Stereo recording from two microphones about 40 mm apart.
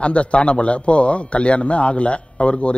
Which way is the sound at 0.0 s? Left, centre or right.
Left.